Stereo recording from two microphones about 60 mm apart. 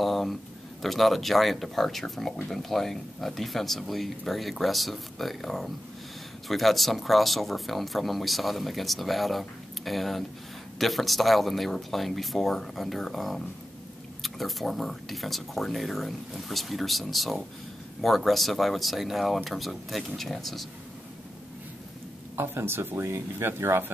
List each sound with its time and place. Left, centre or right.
0.0 s a sound: centre
0.8 s speech: centre
22.3 s speech: right